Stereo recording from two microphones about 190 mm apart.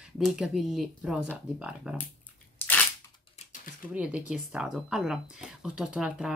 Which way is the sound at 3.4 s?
35° left (ahead or behind).